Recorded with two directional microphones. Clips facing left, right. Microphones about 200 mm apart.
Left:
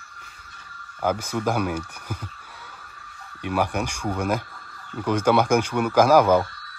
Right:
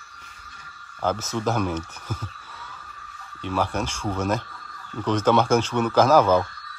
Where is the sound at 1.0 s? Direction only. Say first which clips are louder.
Left 1 dB; 10° left (ahead or behind).